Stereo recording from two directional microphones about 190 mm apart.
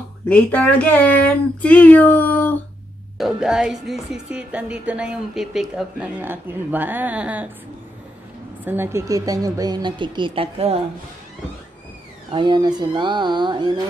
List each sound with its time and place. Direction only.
0.3 s speech: 10° left (ahead or behind)
3.2 s speech: centre (ahead or behind)
8.6 s a woman's voice: 10° right (ahead or behind); by 10.8 s 30° right (ahead or behind)
12.3 s a woman's voice: 25° right (ahead or behind)